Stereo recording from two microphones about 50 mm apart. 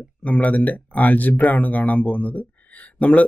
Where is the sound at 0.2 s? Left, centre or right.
Left.